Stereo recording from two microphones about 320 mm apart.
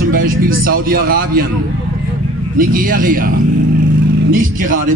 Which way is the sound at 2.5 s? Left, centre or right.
Right.